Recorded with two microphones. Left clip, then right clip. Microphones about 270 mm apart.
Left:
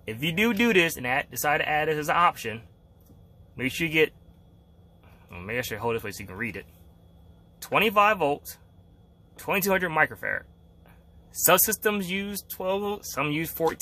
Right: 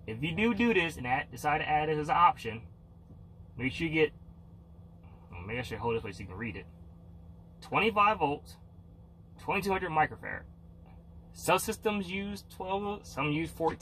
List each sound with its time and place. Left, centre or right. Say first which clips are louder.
0.1 s speech: left 6 dB; left
5.3 s speech: left 7 dB; left
7.7 s speech: left 5 dB; left
9.5 s speech: left 6 dB; left
11.4 s speech: left 7 dB; left